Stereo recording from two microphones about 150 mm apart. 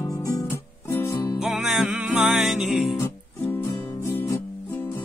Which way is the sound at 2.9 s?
15° left (ahead or behind).